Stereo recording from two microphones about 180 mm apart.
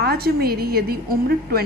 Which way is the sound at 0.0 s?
60° right (ahead or behind).